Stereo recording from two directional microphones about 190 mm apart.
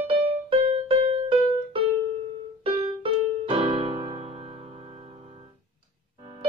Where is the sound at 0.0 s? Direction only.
30° right (ahead or behind).